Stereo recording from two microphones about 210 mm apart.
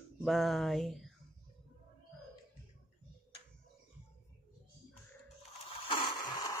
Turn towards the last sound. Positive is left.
turn(degrees=20)  # may be behind; listen again after turning